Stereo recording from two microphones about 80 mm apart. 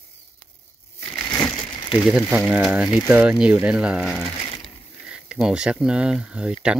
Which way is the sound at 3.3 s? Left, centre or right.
Centre.